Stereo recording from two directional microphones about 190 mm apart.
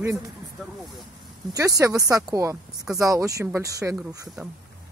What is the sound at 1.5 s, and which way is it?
Speech, 15° right (ahead or behind).